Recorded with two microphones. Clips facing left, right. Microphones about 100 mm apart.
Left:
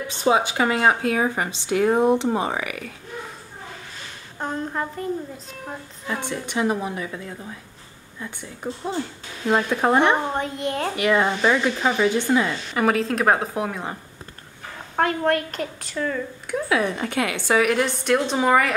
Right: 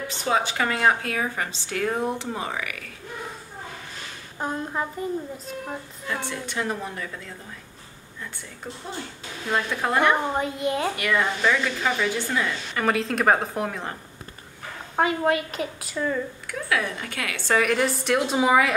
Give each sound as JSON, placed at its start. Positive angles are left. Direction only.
{"t": 0.1, "sound": "speech", "side_deg": 20}
{"t": 4.4, "sound": "a woman's voice", "side_deg": -5}
{"t": 6.0, "sound": "a woman's voice", "side_deg": 15}
{"t": 8.6, "sound": "speech", "side_deg": 20}
{"t": 10.3, "sound": "a woman's voice", "side_deg": -5}
{"t": 11.0, "sound": "speech", "side_deg": 25}
{"t": 12.8, "sound": "a woman's voice", "side_deg": 0}
{"t": 15.0, "sound": "a woman's voice", "side_deg": -5}
{"t": 16.4, "sound": "speech", "side_deg": 25}
{"t": 17.5, "sound": "a woman's voice", "side_deg": 5}